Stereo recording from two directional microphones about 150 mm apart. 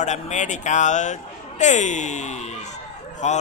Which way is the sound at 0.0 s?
55° left (ahead or behind).